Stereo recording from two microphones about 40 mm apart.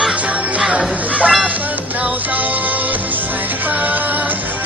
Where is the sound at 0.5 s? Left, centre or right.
Right.